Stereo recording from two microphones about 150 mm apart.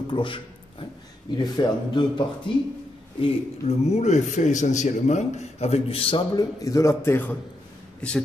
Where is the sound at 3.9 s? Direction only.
50° left (ahead or behind); by 6.4 s 35° left (ahead or behind).